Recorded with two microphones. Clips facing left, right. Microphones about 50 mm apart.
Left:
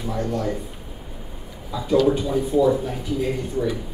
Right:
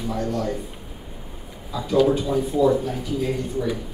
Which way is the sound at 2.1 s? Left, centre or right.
Centre.